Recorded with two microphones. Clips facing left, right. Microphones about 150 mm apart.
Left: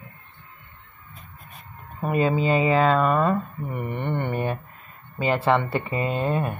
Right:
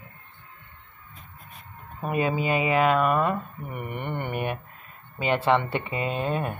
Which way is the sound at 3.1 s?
15° right (ahead or behind).